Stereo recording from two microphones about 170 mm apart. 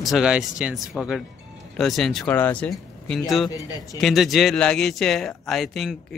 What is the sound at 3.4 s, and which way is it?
Speech, 20° left (ahead or behind).